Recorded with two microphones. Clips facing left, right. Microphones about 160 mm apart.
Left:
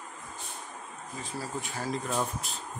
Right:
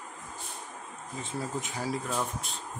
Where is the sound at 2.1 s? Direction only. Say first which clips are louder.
Left 1 dB; 10° left (ahead or behind).